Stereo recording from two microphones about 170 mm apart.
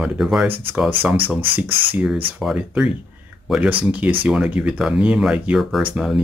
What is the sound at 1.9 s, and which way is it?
Speech, 10° right (ahead or behind).